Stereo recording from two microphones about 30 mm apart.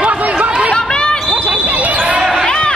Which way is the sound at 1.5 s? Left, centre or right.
Right.